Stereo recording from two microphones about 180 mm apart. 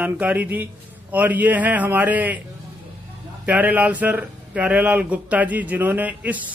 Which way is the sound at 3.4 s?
10° right (ahead or behind).